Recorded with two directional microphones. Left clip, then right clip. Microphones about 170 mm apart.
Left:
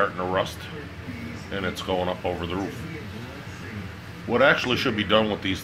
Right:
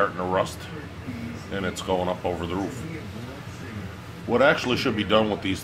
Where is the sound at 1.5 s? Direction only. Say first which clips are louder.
Even; 5° left (ahead or behind).